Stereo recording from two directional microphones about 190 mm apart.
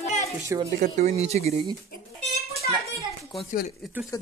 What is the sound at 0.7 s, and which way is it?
Speech, 40° right (ahead or behind).